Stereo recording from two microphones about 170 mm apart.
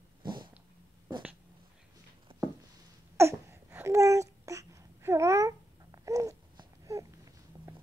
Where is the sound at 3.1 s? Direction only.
15° right (ahead or behind).